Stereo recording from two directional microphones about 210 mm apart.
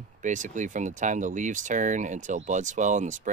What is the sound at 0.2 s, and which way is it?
Speech, 35° right (ahead or behind).